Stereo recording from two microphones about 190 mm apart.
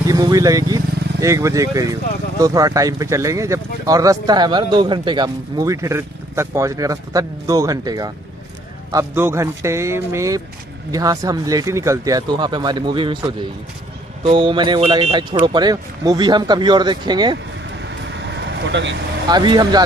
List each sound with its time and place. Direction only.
0.0 s speech: 20° right (ahead or behind)
14.2 s speech: 25° right (ahead or behind)
18.7 s speech: 70° right (ahead or behind)
19.2 s speech: 25° right (ahead or behind)